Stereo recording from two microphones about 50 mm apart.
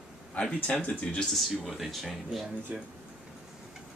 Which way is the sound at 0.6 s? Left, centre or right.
Left.